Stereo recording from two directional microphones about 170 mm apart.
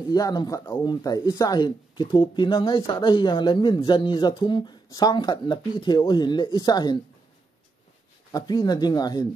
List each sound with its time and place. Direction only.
0.1 s speech: 25° left (ahead or behind)
8.3 s speech: 25° left (ahead or behind)